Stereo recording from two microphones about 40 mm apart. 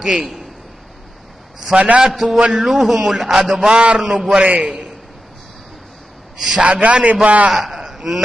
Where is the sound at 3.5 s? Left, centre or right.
Centre.